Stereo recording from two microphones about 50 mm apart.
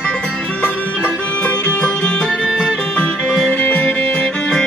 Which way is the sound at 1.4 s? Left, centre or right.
Left.